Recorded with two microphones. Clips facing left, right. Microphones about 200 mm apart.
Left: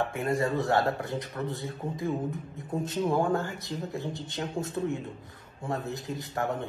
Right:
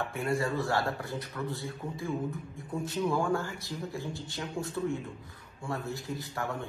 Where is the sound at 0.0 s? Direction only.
20° left (ahead or behind).